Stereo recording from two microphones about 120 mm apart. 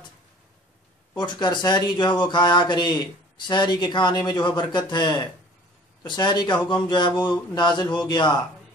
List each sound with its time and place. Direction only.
1.1 s speech: 40° left (ahead or behind)